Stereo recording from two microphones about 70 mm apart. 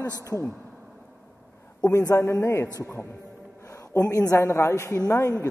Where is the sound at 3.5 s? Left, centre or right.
Left.